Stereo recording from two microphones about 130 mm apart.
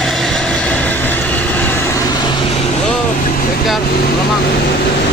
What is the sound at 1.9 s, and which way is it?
Vehicle, 30° left (ahead or behind).